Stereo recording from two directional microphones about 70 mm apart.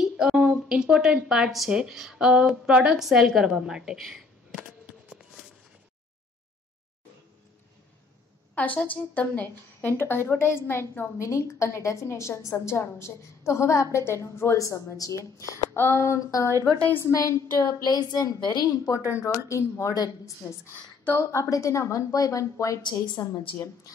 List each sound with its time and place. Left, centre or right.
0.0 s speech: centre
8.5 s a woman's voice: left
15.7 s a woman's voice: left
17.8 s a woman's voice: left
18.7 s a woman's voice: left
21.2 s a woman's voice: left